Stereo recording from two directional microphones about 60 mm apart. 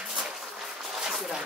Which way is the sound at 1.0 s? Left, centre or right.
Centre.